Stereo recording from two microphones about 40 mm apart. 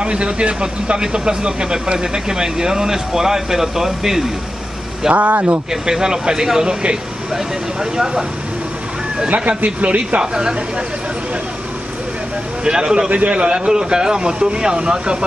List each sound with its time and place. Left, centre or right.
0.0 s speech: right; by 4.2 s centre
5.1 s speech: right
5.7 s speech: centre
9.3 s a man's voice: right
12.6 s speech: right
13.1 s speech: right